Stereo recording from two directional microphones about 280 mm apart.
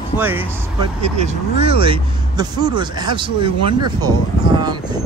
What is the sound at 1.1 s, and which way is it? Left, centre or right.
Speech, right.